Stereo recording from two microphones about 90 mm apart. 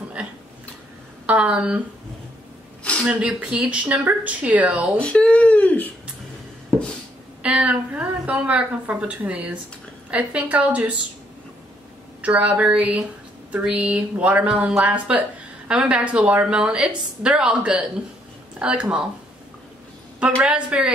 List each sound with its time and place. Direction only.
0.2 s a sound: 10° right (ahead or behind)
1.2 s a woman's voice: 15° right (ahead or behind)
2.8 s a sound: 10° left (ahead or behind)
3.1 s a woman's voice: 15° right (ahead or behind)
5.0 s speech: 15° left (ahead or behind)
7.4 s a woman's voice: 15° right (ahead or behind)
12.2 s a woman's voice: 15° right (ahead or behind)
20.4 s a woman's voice: 10° right (ahead or behind)